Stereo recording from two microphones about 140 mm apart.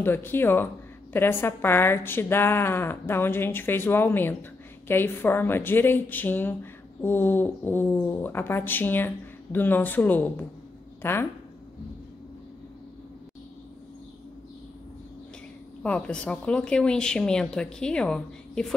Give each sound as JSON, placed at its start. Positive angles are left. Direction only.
{"t": 0.0, "sound": "speech", "side_deg": 15}
{"t": 15.8, "sound": "speech", "side_deg": 5}